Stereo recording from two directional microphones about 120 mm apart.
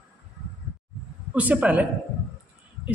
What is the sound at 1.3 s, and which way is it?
Speech, 10° right (ahead or behind).